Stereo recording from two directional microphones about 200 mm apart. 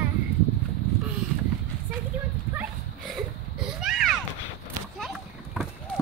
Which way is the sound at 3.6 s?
5° right (ahead or behind).